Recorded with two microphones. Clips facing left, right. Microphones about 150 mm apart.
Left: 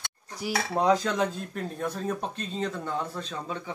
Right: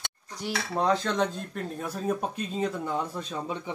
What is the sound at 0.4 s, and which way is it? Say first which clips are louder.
Speech: left 2 dB; 10° left (ahead or behind).